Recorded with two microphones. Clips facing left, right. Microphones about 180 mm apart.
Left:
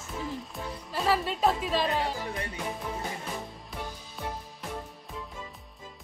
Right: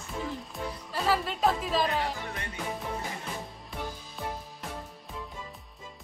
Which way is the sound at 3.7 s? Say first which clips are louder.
Right 2 dB; centre (ahead or behind).